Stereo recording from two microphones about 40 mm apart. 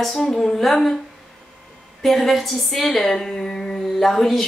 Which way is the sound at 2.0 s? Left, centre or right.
Centre.